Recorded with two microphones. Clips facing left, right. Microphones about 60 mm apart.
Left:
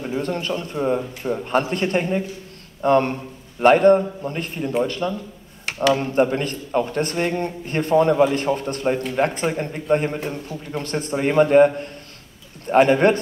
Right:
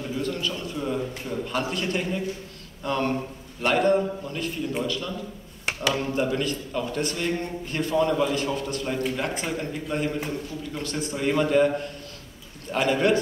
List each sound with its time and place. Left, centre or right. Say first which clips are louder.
0.0 s a man's voice: left 4 dB; left